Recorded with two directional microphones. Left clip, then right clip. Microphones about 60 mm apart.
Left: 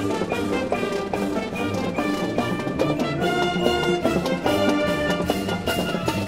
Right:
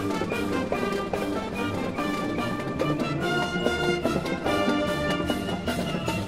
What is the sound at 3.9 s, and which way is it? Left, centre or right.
Music, centre.